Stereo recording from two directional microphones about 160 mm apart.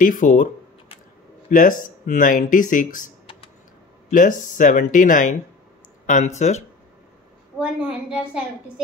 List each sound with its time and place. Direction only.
0.0 s speech: 55° left (ahead or behind)
1.5 s speech: 55° left (ahead or behind)
4.1 s speech: 55° left (ahead or behind)
7.5 s a woman's voice: centre (ahead or behind)